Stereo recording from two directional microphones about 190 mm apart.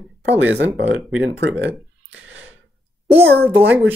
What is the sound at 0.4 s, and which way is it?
Speech, 70° right (ahead or behind).